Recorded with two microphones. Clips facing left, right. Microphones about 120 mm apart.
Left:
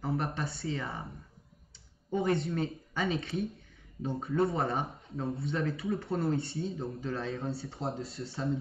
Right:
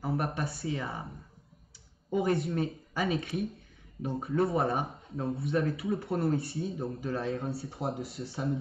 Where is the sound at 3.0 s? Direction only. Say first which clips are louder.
Right 1 dB; 30° left (ahead or behind).